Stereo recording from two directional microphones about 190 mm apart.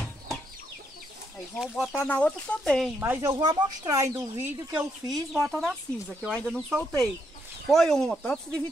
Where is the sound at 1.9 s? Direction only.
10° left (ahead or behind).